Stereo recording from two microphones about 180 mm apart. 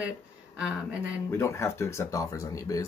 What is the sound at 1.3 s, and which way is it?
Speech, 15° left (ahead or behind).